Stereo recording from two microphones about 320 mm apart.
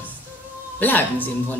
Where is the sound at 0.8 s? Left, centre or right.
Centre.